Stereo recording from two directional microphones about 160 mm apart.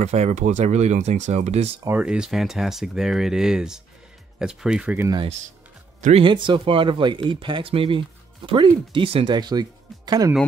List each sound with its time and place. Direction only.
0.0 s speech: 45° right (ahead or behind)
1.9 s speech: 5° right (ahead or behind)
5.9 s speech: 50° right (ahead or behind)
6.2 s speech: 30° right (ahead or behind)